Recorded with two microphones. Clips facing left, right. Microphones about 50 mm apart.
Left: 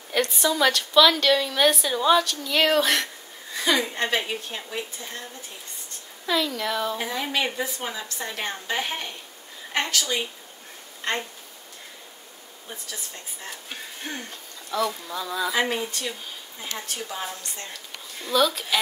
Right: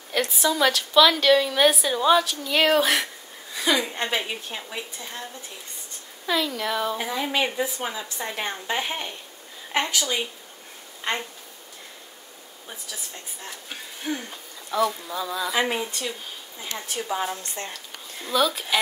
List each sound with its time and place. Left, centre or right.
0.1 s a woman's voice: centre
6.2 s a woman's voice: centre
14.3 s a woman's voice: centre; by 17.6 s right
18.3 s a woman's voice: centre